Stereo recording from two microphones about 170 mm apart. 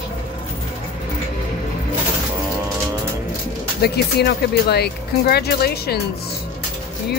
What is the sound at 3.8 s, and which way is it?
Speech, 70° left (ahead or behind).